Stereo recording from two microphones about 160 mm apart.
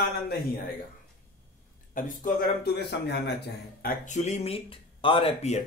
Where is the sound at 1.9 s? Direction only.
55° left (ahead or behind); by 3.9 s 80° left.